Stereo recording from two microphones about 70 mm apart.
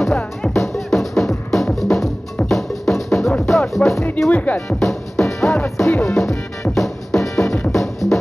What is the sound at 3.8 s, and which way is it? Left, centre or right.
Music, centre.